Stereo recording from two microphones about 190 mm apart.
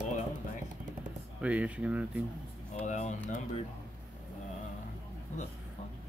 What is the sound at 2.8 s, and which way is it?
Speech, 40° left (ahead or behind).